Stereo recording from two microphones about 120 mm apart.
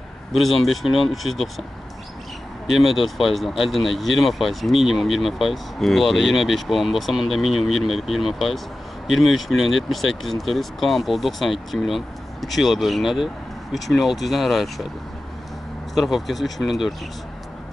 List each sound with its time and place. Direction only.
0.7 s speech: centre (ahead or behind)
15.9 s speech: centre (ahead or behind)